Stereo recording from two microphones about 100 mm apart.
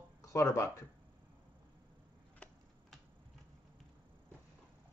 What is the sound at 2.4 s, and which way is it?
Typing, 15° left (ahead or behind).